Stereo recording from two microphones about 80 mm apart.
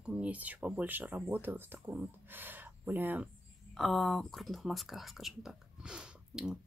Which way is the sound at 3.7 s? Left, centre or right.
Centre.